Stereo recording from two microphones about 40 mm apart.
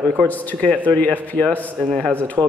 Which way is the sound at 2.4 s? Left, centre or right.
Right.